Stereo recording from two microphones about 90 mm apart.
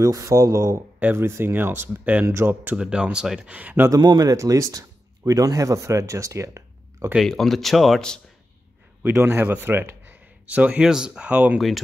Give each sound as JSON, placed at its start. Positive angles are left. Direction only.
{"t": 0.0, "sound": "speech", "side_deg": -40}
{"t": 0.9, "sound": "speech", "side_deg": -25}
{"t": 3.9, "sound": "speech", "side_deg": -45}
{"t": 7.2, "sound": "speech", "side_deg": 5}
{"t": 9.0, "sound": "speech", "side_deg": -25}